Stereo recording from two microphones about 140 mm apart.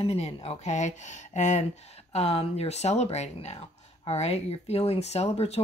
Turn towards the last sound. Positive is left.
turn(degrees=50)  # may be behind; listen again after turning